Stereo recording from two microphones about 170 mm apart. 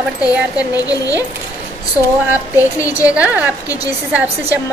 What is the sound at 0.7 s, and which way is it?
Speech, 20° left (ahead or behind).